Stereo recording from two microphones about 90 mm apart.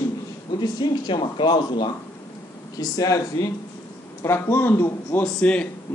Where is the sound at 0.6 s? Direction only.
60° left (ahead or behind).